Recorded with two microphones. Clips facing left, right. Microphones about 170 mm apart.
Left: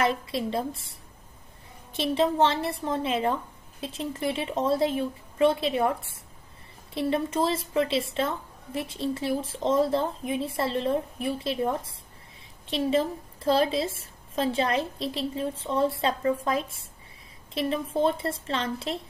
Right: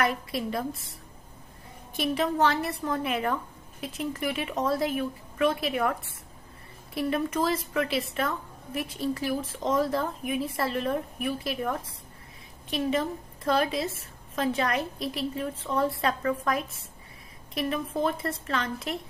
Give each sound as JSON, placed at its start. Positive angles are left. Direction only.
{"t": 0.0, "sound": "a woman's voice", "side_deg": 25}
{"t": 2.0, "sound": "a woman's voice", "side_deg": 25}